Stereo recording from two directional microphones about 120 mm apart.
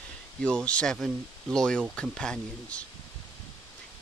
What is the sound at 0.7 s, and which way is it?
Speech, 10° left (ahead or behind).